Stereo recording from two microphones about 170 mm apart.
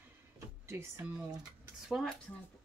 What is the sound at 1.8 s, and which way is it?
Speech, centre (ahead or behind).